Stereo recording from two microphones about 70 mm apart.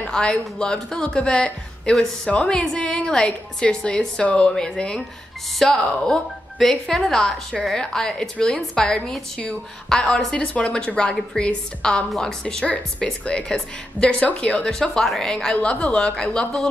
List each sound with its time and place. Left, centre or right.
0.0 s a woman's voice: centre